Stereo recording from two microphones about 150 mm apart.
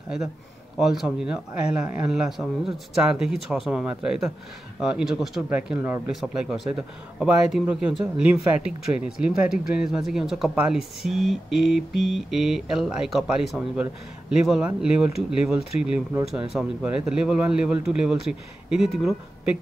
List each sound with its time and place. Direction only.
0.7 s speech: 5° right (ahead or behind)